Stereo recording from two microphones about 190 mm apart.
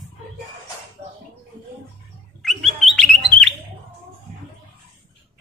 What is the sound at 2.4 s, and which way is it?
Bird, centre (ahead or behind).